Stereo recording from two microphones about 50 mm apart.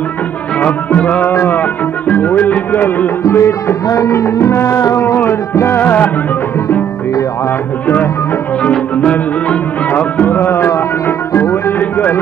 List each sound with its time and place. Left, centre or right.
0.6 s music: left
1.2 s music: left
2.0 s music: left
3.3 s music: left
5.1 s music: left
5.8 s music: left
8.6 s music: left